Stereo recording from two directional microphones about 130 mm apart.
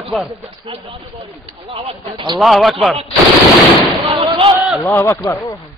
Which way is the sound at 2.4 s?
Centre (ahead or behind).